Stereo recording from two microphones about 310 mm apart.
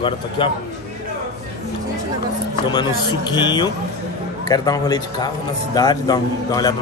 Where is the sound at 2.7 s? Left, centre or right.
Centre.